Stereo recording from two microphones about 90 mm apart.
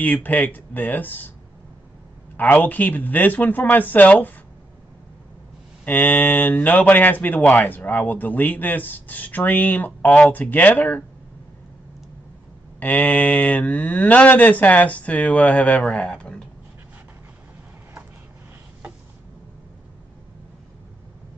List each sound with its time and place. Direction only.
0.0 s speech: 15° left (ahead or behind)
2.3 s speech: 20° left (ahead or behind)
5.9 s speech: 15° left (ahead or behind)
12.8 s speech: 15° left (ahead or behind)